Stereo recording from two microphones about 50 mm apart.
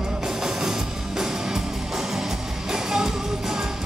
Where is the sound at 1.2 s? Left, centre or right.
Centre.